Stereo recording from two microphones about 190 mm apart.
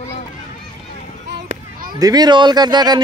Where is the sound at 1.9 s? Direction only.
20° right (ahead or behind).